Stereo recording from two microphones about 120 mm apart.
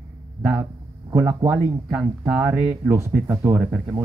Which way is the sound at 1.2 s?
15° right (ahead or behind).